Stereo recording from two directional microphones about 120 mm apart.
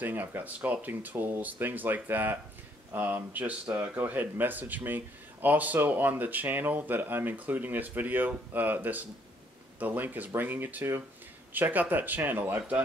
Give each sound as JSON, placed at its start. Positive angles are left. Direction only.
{"t": 0.0, "sound": "speech", "side_deg": -15}